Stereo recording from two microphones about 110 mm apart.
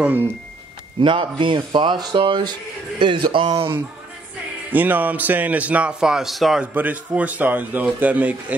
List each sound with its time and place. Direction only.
1.0 s speech: 50° right (ahead or behind)
4.7 s a man's voice: 15° right (ahead or behind)
6.6 s a man's voice: 15° right (ahead or behind)